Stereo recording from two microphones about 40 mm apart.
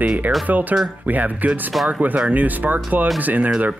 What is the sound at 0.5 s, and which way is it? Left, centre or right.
Speech, right.